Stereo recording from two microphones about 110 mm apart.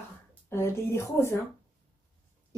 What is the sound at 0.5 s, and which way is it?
Speech, 25° left (ahead or behind).